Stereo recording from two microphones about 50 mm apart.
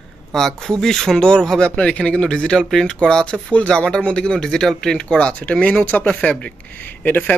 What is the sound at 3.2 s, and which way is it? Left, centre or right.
Speech, left.